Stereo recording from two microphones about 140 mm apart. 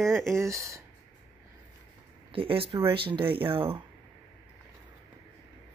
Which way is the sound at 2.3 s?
40° right (ahead or behind).